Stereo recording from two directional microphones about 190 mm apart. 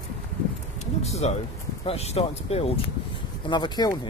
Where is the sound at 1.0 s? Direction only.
35° left (ahead or behind).